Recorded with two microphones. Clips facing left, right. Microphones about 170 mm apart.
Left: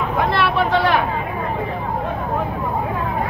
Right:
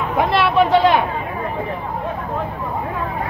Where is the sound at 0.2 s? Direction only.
15° right (ahead or behind).